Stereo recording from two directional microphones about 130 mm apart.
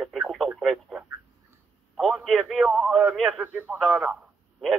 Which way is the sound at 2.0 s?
Centre (ahead or behind).